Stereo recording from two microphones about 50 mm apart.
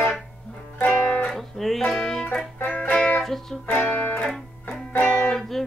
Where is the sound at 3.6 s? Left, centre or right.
Left.